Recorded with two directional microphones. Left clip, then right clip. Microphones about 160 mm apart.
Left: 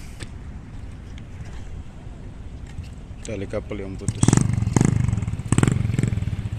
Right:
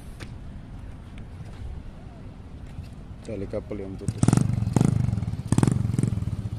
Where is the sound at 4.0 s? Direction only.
45° right (ahead or behind); by 6.1 s 90° right.